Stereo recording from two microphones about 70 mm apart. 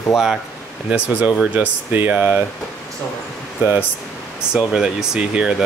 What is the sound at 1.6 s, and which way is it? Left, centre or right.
Speech, right.